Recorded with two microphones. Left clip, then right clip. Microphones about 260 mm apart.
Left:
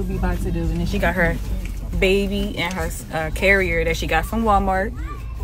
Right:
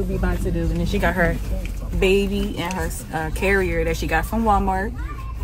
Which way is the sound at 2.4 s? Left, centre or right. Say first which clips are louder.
Left 1 dB; centre.